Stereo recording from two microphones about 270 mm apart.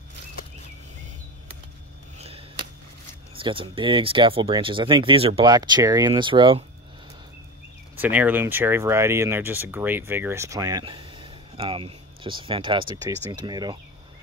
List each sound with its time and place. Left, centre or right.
2.1 s a sound: right
3.3 s speech: centre
7.9 s speech: centre